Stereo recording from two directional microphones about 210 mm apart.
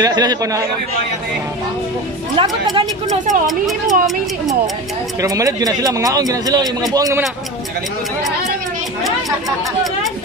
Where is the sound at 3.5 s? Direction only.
Centre (ahead or behind).